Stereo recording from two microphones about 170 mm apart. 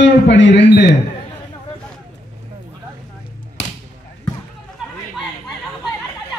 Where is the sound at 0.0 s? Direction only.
90° left.